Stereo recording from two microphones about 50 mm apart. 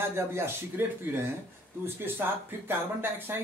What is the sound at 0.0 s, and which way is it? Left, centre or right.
Speech, right.